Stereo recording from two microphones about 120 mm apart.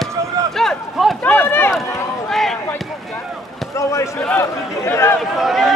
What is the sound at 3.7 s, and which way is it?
Basketball bounce, 25° left (ahead or behind).